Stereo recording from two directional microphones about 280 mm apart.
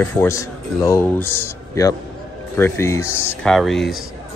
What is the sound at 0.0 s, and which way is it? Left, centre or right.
A man's voice, centre.